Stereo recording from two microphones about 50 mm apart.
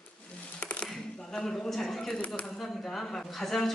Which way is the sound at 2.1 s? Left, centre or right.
Left.